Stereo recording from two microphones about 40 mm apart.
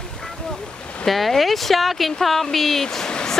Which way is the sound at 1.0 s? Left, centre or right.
Centre.